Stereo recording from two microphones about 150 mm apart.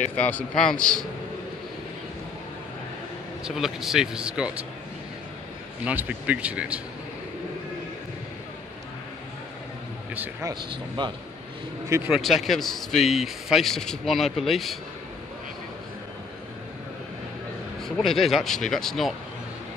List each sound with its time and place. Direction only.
0.1 s a man's voice: 10° left (ahead or behind)
3.4 s a man's voice: 5° right (ahead or behind)
5.9 s speech: 10° right (ahead or behind)
10.1 s speech: 10° right (ahead or behind)
10.5 s speech: 30° right (ahead or behind)
11.9 s speech: 10° right (ahead or behind)
12.2 s a man's voice: centre (ahead or behind)
17.8 s a man's voice: 5° left (ahead or behind)